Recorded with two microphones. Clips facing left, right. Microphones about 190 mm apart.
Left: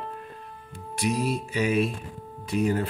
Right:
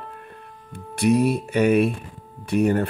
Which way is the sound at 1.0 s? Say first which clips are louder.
Right 8 dB; 60° right (ahead or behind).